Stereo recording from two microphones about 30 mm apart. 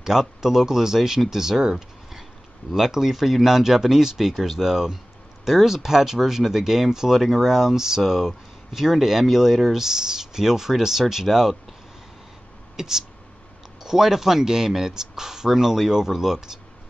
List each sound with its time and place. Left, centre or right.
0.0 s speech: centre
2.7 s speech: centre
12.7 s speech: centre